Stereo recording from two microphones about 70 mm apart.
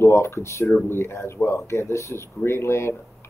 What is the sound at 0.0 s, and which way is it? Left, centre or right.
Speech, left.